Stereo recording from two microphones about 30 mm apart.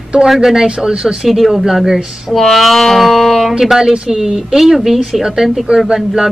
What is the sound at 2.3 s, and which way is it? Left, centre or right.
Speech, centre.